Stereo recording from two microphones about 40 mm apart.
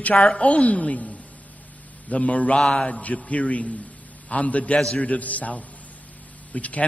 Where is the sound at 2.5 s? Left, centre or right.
Left.